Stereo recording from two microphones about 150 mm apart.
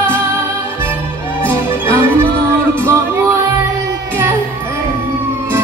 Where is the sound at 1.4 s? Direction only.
15° right (ahead or behind).